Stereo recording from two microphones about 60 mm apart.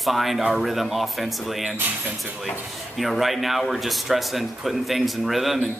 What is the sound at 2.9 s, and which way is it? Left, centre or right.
Speech, centre.